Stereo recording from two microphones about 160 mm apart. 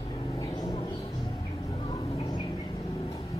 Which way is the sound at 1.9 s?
30° left (ahead or behind).